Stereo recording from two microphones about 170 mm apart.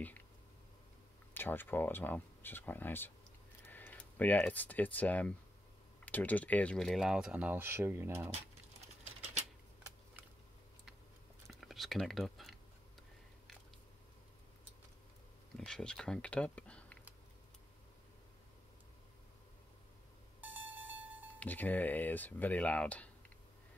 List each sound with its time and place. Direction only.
1.3 s speech: 10° left (ahead or behind); by 8.3 s 15° right (ahead or behind)
9.0 s typewriter: 40° right (ahead or behind)
11.4 s a sound: centre (ahead or behind)
15.5 s speech: 5° left (ahead or behind)
20.3 s a sound: 10° right (ahead or behind)
21.4 s speech: 10° left (ahead or behind)